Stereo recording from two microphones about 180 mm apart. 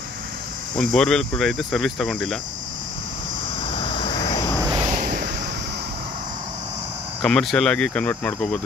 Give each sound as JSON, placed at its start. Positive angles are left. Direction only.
{"t": 0.7, "sound": "cricket", "side_deg": 5}
{"t": 3.6, "sound": "vehicle", "side_deg": 30}
{"t": 4.6, "sound": "vehicle", "side_deg": -20}
{"t": 4.9, "sound": "a sound", "side_deg": -55}
{"t": 7.2, "sound": "cricket", "side_deg": 5}